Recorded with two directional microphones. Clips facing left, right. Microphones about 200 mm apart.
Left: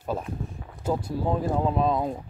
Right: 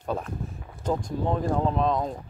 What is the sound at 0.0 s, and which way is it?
Speech, 5° left (ahead or behind).